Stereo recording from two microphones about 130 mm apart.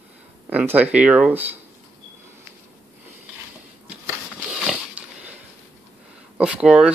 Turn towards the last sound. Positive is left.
turn(degrees=-5)  # may be behind; listen again after turning